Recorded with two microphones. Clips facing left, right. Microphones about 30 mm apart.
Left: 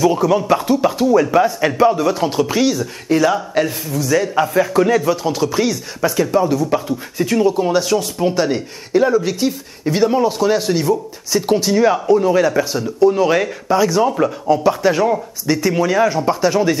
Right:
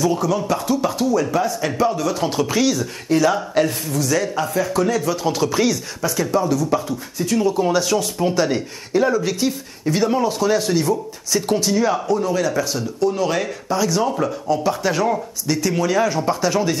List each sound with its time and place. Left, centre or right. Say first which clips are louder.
0.0 s speech: left 5 dB; centre
2.2 s speech: even; centre
4.4 s speech: left 5 dB; left
5.1 s a sound: left 2 dB; centre
5.9 s speech: left 4 dB; left